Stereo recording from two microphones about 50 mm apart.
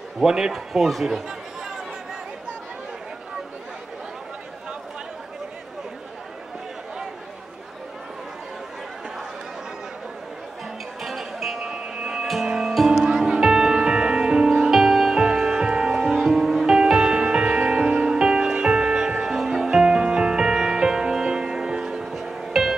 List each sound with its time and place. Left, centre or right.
0.2 s speech: centre
11.0 s music: centre
11.7 s printer: centre
12.3 s music: centre